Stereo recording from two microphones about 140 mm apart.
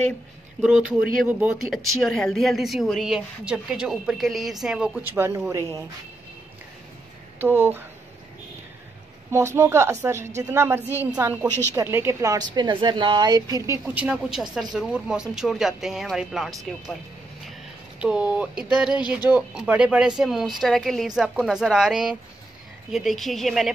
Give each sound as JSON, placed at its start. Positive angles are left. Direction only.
{"t": 0.6, "sound": "a woman's voice", "side_deg": -5}
{"t": 7.3, "sound": "speech", "side_deg": -15}
{"t": 9.3, "sound": "a woman's voice", "side_deg": -20}
{"t": 13.9, "sound": "speech", "side_deg": -5}
{"t": 17.5, "sound": "a sound", "side_deg": -10}
{"t": 18.6, "sound": "speech", "side_deg": -5}